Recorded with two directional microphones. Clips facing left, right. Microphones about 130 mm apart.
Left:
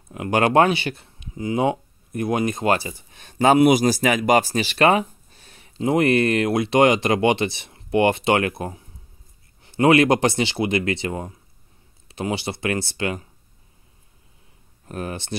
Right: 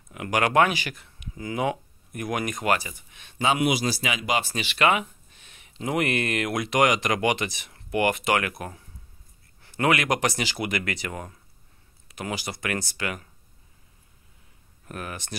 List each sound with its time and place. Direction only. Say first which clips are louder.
0.1 s speech: left 5 dB; 30° left (ahead or behind)
14.9 s speech: left 6 dB; 30° left (ahead or behind)